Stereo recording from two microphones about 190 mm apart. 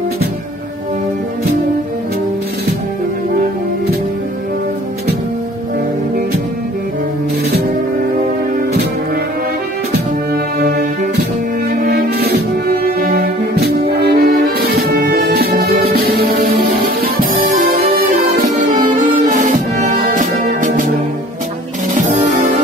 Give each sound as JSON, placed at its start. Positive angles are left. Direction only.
{"t": 10.3, "sound": "music", "side_deg": -55}
{"t": 21.9, "sound": "music", "side_deg": -40}